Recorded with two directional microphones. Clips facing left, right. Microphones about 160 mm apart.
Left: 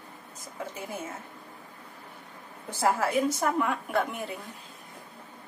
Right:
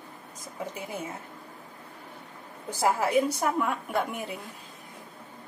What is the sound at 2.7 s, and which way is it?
A woman's voice, 10° right (ahead or behind).